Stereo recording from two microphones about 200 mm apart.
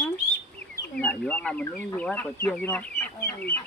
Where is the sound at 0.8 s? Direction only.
5° left (ahead or behind).